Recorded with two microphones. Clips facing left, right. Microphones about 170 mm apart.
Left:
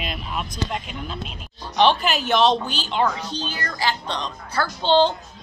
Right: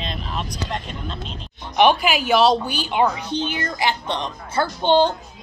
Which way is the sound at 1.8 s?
10° right (ahead or behind).